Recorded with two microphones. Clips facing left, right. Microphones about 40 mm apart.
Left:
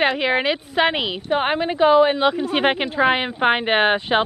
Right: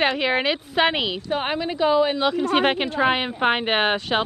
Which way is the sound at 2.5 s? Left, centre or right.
Centre.